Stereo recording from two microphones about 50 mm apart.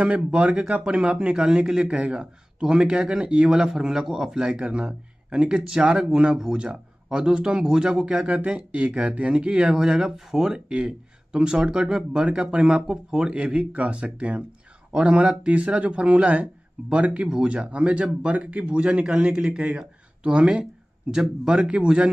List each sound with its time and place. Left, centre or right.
0.0 s a man's voice: right
3.4 s a man's voice: centre
4.4 s a man's voice: centre
13.3 s speech: right